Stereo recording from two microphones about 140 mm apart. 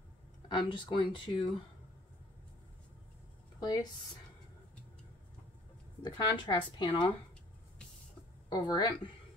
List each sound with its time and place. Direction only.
0.7 s speech: 35° left (ahead or behind)
3.5 s speech: 30° left (ahead or behind)
6.0 s speech: 35° left (ahead or behind)
8.5 s speech: 30° left (ahead or behind)